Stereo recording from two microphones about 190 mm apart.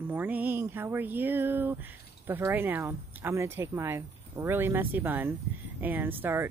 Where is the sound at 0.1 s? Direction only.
10° right (ahead or behind).